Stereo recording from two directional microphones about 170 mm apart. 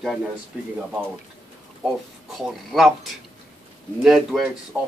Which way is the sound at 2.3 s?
Centre (ahead or behind).